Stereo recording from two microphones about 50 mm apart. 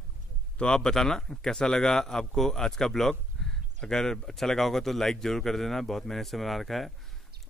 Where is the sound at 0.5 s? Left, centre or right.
Centre.